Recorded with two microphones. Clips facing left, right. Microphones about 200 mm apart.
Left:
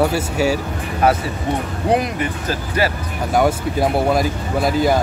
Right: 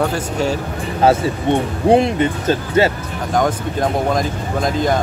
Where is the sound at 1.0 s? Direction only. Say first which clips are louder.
Right 3 dB; 25° right (ahead or behind).